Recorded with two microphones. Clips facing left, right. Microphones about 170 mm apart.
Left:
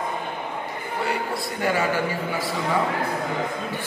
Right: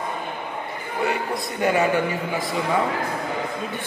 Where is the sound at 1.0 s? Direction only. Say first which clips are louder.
Right 3 dB; 20° right (ahead or behind).